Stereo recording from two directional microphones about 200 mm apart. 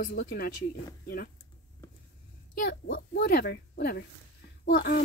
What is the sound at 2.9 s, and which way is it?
Speech, 55° left (ahead or behind).